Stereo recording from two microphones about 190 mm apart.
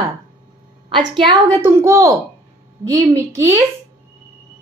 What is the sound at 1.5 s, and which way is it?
A woman's voice, 15° right (ahead or behind).